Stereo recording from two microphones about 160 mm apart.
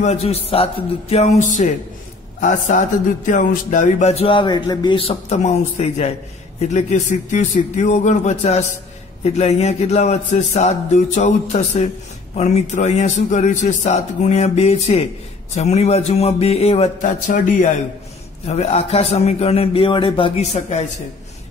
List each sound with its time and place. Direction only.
0.0 s a man's voice: 40° left (ahead or behind)
2.4 s music: 50° left (ahead or behind)
15.5 s a man's voice: 40° left (ahead or behind)
18.5 s a man's voice: 40° left (ahead or behind)